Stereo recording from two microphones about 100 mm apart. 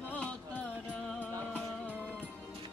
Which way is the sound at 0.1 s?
10° left (ahead or behind).